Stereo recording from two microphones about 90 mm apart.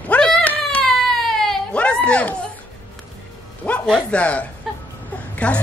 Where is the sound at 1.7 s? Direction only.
15° left (ahead or behind).